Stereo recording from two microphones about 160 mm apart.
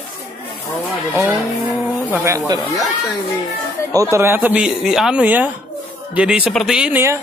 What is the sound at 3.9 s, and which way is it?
Speech, 20° right (ahead or behind).